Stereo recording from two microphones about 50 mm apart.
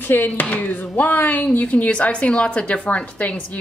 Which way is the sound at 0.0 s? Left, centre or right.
Left.